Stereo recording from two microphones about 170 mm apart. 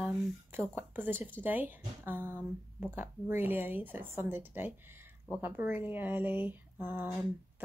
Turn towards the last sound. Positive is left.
turn(degrees=-10)  # may be behind; listen again after turning